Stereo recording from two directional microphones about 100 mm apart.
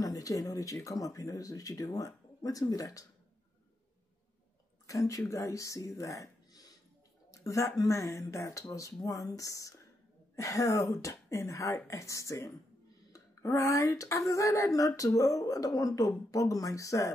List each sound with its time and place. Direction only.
0.0 s speech: 35° left (ahead or behind)
4.8 s speech: 35° left (ahead or behind)